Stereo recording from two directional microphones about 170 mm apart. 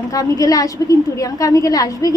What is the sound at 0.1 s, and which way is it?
A woman's voice, 20° left (ahead or behind).